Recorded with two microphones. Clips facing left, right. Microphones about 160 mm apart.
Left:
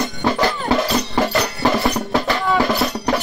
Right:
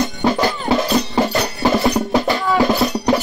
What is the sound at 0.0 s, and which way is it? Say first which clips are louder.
Music: right 2 dB; 20° right (ahead or behind).